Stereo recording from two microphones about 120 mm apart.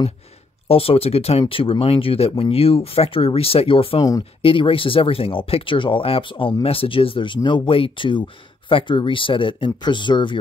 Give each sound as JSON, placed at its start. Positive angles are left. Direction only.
{"t": 0.7, "sound": "speech", "side_deg": 55}